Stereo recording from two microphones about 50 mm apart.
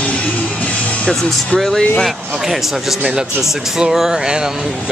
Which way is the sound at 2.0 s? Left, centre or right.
Centre.